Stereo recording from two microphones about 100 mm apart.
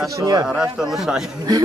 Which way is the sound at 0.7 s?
5° right (ahead or behind).